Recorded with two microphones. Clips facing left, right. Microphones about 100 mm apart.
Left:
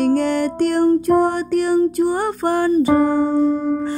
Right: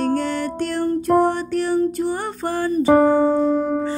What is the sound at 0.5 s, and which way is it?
Music, 55° left (ahead or behind).